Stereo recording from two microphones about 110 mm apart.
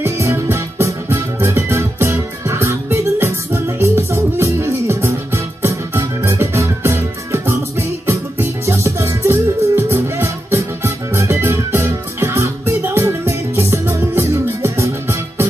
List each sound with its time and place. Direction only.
0.0 s music: 25° right (ahead or behind)